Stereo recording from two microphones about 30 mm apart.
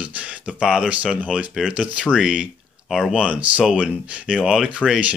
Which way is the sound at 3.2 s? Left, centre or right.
Right.